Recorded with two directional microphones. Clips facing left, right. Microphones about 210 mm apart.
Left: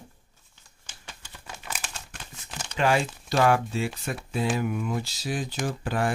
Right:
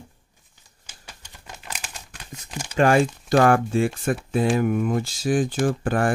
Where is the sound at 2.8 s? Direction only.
50° right (ahead or behind).